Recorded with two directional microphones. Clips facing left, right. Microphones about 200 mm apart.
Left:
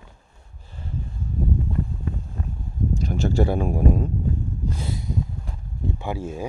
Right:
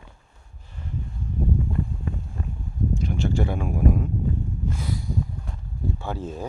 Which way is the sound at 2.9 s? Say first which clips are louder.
Left 4 dB; 40° left (ahead or behind).